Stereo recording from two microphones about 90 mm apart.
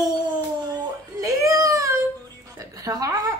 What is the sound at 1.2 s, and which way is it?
Baby cry, 40° right (ahead or behind).